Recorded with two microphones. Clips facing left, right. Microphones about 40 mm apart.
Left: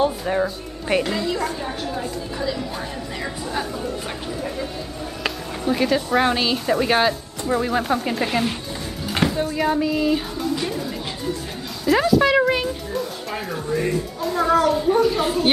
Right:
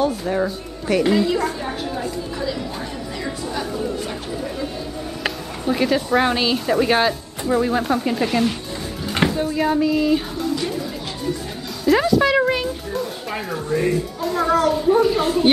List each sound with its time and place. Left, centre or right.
0.0 s speech: centre
1.0 s a woman's voice: centre
5.7 s a woman's voice: centre
11.8 s a woman's voice: centre